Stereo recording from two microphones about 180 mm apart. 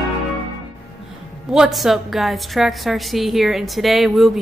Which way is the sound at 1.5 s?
Centre (ahead or behind).